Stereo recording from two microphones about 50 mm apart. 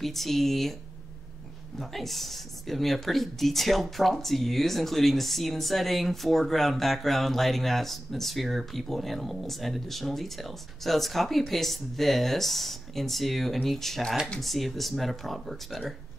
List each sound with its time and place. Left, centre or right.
0.0 s speech: centre
1.8 s speech: centre